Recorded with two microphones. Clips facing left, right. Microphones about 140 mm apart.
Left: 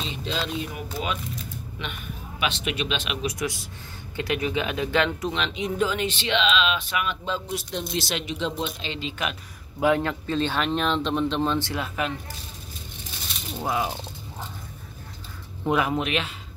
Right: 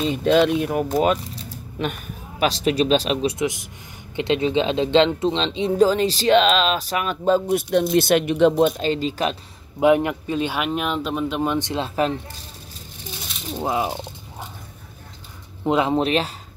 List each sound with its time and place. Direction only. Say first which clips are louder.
0.0 s speech: right 13 dB; 55° right (ahead or behind)
1.2 s a sound: even; 35° right (ahead or behind)
2.4 s speech: right 8 dB; 35° right (ahead or behind)
9.8 s speech: right 5 dB; 20° right (ahead or behind)
13.6 s a sound: right 4 dB; 20° right (ahead or behind)
15.6 s speech: right 5 dB; 25° right (ahead or behind)